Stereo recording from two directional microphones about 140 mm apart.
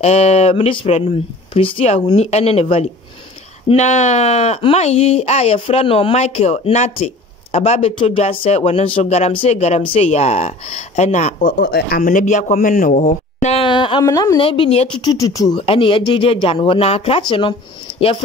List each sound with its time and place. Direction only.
0.0 s speech: 50° left (ahead or behind)
11.5 s speech: 90° left; by 13.6 s 60° left (ahead or behind)
13.6 s a sound: 35° left (ahead or behind)
14.0 s speech: 25° left (ahead or behind)
14.4 s speech: 40° left (ahead or behind)
14.9 s speech: 30° left (ahead or behind)
15.6 s speech: 40° left (ahead or behind)